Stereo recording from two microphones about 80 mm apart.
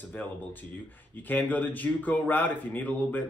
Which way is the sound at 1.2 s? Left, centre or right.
Left.